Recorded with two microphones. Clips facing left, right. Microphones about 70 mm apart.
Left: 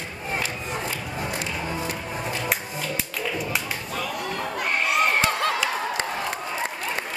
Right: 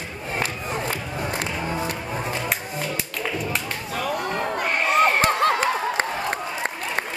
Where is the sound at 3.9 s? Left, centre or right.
Right.